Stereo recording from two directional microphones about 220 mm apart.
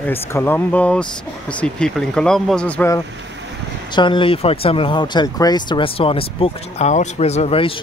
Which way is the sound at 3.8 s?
20° left (ahead or behind).